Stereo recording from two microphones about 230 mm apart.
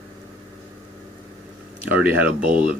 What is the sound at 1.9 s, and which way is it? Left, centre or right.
Speech, centre.